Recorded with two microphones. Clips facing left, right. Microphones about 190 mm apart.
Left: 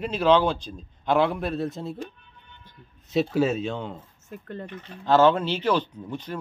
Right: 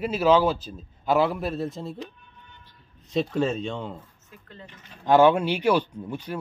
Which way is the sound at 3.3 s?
5° left (ahead or behind).